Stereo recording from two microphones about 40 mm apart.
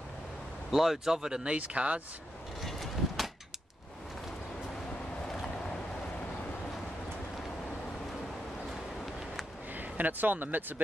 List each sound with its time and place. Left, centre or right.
0.7 s speech: centre
1.6 s speech: right
2.6 s vehicle: centre
5.4 s boat: centre
9.8 s speech: right